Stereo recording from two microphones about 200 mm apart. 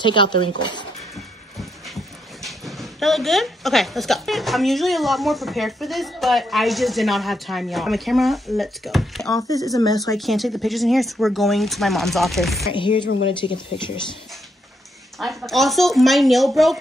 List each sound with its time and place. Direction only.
0.0 s speech: 25° left (ahead or behind)
2.4 s speech: centre (ahead or behind)
9.3 s speech: 20° left (ahead or behind)
10.1 s speech: centre (ahead or behind)
12.7 s speech: 25° left (ahead or behind)
15.1 s speech: centre (ahead or behind)